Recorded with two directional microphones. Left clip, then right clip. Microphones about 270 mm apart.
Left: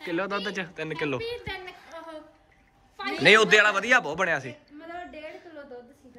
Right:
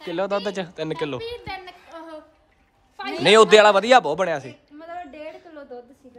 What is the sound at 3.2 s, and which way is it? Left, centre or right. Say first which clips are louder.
Speech: right 5 dB; centre.